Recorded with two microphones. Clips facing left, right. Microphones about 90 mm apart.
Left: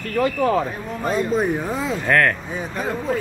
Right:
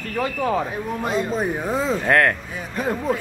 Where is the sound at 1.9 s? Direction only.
30° right (ahead or behind).